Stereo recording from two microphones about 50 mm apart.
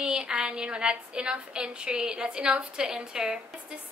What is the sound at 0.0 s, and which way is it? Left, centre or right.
A woman's voice, centre.